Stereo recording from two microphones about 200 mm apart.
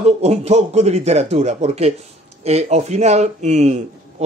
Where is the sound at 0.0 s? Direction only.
30° right (ahead or behind).